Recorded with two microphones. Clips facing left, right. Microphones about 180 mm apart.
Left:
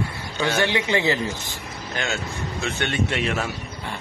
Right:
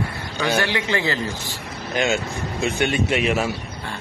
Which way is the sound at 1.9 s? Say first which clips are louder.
Right 7 dB; 15° right (ahead or behind).